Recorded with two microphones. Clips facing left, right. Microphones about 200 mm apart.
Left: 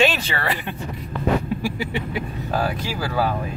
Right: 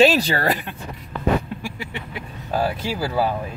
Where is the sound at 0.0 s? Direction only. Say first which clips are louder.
Right 5 dB; 35° right (ahead or behind).